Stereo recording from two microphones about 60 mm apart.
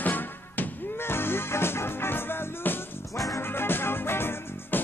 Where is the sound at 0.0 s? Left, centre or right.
Left.